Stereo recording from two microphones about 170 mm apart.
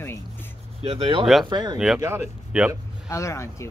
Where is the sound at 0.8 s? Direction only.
35° right (ahead or behind).